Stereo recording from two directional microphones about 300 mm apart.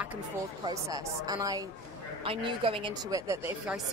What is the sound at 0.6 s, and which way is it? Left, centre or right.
A woman's voice, centre.